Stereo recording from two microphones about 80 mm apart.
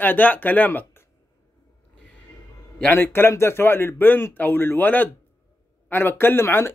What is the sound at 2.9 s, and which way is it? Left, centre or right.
Speech, left.